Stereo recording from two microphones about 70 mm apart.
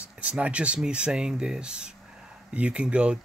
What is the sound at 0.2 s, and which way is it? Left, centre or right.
Speech, centre.